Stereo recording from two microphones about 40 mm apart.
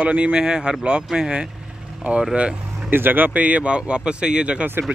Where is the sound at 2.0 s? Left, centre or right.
Right.